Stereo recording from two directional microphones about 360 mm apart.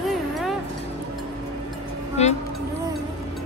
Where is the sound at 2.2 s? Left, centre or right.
Centre.